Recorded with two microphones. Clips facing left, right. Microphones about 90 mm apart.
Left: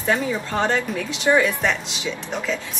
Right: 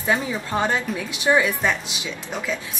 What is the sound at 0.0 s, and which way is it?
Speech, 10° right (ahead or behind).